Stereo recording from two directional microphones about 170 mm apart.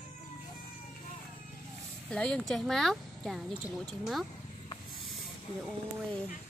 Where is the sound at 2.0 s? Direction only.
5° left (ahead or behind).